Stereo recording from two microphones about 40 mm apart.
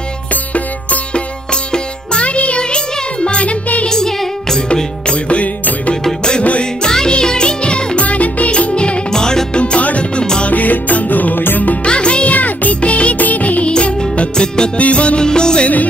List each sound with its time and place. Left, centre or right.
1.1 s music: left
3.9 s music: centre
5.1 s music: left
6.8 s music: centre
9.1 s music: centre
9.6 s music: left
11.8 s music: left
12.4 s music: left
14.3 s music: left
14.8 s music: left
15.2 s music: left